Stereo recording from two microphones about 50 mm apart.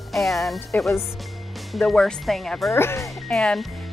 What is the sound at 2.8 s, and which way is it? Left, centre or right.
Speech, left.